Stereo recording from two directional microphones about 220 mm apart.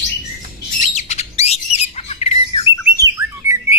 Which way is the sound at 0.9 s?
30° left (ahead or behind).